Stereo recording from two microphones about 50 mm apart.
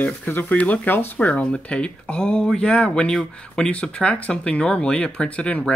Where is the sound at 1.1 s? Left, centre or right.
Left.